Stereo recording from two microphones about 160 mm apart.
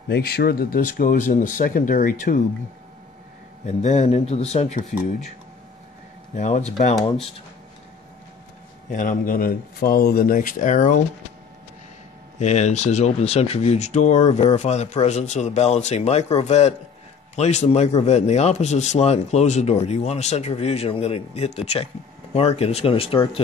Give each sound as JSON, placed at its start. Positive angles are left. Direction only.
{"t": 0.1, "sound": "speech", "side_deg": 75}
{"t": 3.6, "sound": "a man's voice", "side_deg": 45}
{"t": 6.3, "sound": "a man's voice", "side_deg": 50}
{"t": 8.9, "sound": "speech", "side_deg": 55}
{"t": 12.4, "sound": "a man's voice", "side_deg": 45}